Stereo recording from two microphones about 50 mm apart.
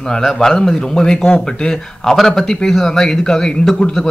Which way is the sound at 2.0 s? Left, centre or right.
Centre.